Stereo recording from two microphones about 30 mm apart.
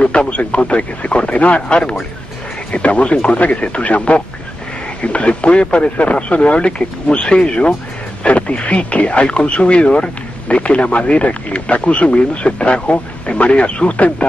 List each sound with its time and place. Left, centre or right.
0.3 s speech: left
1.3 s speech: left
1.7 s speech: left
2.7 s speech: left